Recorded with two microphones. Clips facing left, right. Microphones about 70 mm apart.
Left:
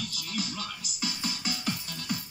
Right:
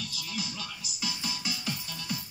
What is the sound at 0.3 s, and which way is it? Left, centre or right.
Music, left.